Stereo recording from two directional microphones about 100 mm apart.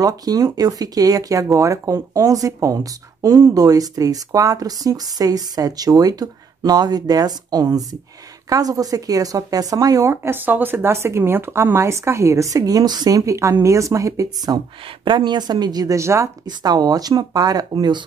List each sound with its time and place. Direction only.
0.0 s a woman's voice: 40° right (ahead or behind)
16.4 s speech: 40° right (ahead or behind)